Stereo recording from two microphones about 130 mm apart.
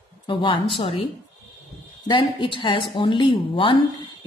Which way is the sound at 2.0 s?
40° left (ahead or behind).